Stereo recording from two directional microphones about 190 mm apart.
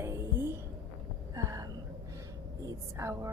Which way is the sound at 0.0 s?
15° right (ahead or behind).